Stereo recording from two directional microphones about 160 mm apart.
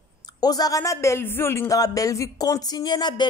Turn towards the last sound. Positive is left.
turn(degrees=25)  # may be behind; listen again after turning